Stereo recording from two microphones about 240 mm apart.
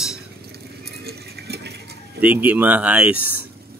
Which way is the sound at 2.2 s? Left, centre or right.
Centre.